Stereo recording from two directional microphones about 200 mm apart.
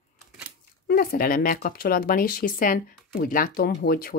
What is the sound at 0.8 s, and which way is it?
Speech, 50° left (ahead or behind).